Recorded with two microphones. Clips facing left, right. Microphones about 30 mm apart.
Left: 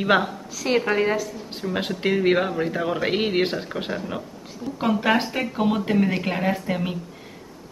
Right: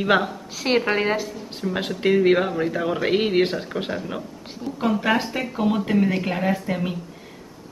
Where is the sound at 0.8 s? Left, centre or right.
Right.